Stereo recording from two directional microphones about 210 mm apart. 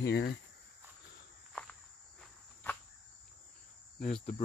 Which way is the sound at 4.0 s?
40° left (ahead or behind).